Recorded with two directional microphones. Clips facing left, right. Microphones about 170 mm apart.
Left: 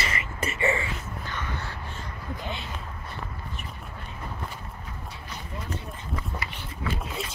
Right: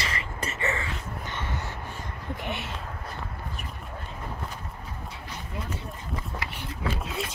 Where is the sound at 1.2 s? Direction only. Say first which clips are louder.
Right 1 dB; 20° right (ahead or behind).